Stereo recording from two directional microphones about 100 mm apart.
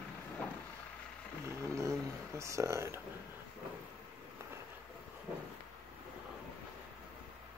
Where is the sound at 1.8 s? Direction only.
30° right (ahead or behind).